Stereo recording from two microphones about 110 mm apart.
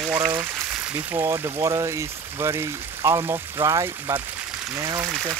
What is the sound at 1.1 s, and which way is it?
Speech, 30° right (ahead or behind).